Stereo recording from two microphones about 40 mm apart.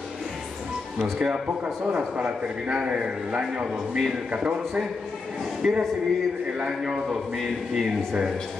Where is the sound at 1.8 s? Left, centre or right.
Right.